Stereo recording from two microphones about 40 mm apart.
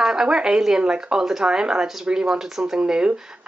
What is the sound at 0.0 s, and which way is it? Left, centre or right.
Speech, centre.